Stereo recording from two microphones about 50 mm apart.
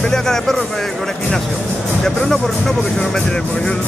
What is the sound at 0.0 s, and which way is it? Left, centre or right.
Speech, centre.